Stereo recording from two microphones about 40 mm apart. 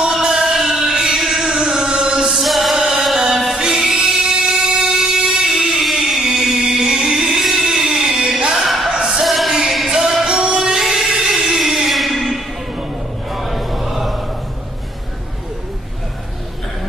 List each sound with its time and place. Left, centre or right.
0.2 s music: centre
1.2 s chant: centre
2.3 s chant: centre
3.2 s music: centre
5.8 s music: centre
6.2 s music: centre
8.5 s a sound: centre
8.9 s music: centre
9.2 s music: centre
9.5 s music: centre
13.3 s a sound: centre